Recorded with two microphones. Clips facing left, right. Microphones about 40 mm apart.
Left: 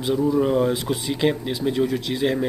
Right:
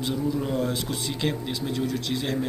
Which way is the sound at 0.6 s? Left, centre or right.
Centre.